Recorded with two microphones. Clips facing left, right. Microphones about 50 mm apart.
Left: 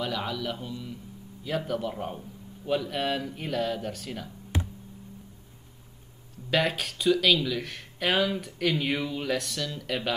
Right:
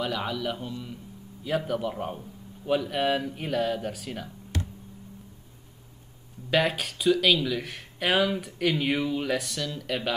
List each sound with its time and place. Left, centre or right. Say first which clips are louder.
0.0 s speech: right 2 dB; centre
4.5 s tick: left 1 dB; centre
6.5 s speech: right 1 dB; centre